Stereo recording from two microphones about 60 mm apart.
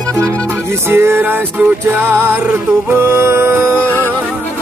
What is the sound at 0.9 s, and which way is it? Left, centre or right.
Music, right.